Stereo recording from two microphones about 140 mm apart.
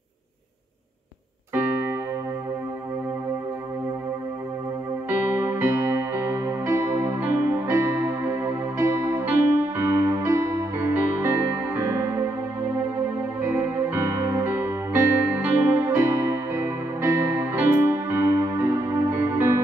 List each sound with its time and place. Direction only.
5.1 s music: 15° right (ahead or behind)
13.4 s music: 15° right (ahead or behind)